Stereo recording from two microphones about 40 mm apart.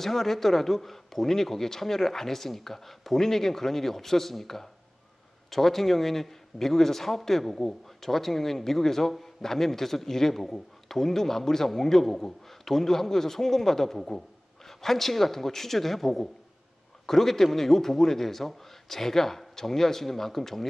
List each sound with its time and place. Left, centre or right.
0.0 s a man's voice: centre